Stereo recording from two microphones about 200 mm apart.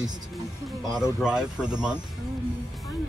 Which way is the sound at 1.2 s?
5° right (ahead or behind).